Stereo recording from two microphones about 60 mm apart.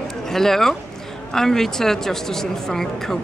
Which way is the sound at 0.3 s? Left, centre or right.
Centre.